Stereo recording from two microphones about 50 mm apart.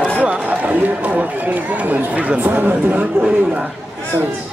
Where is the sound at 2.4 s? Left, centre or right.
Right.